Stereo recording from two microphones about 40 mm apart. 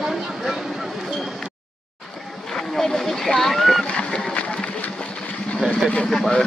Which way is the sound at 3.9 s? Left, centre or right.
Left.